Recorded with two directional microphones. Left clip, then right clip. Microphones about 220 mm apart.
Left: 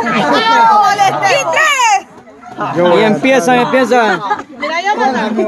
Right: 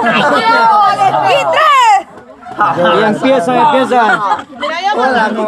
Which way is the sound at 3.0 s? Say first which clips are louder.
Even; 25° left (ahead or behind).